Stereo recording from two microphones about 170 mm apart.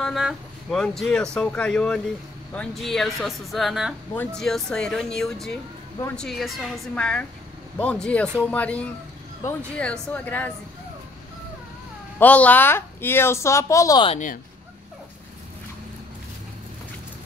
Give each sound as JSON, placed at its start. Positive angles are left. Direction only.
{"t": 0.0, "sound": "a woman's voice", "side_deg": 0}
{"t": 12.2, "sound": "a woman's voice", "side_deg": 10}
{"t": 14.0, "sound": "speech", "side_deg": 45}